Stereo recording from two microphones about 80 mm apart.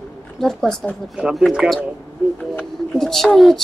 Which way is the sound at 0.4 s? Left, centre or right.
Centre.